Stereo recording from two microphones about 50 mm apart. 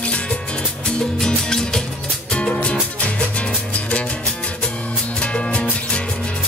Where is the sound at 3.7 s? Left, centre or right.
Left.